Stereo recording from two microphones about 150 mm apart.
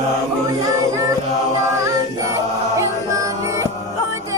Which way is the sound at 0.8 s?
25° right (ahead or behind).